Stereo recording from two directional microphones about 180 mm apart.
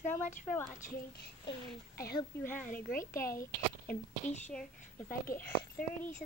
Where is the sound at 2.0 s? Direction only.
20° left (ahead or behind).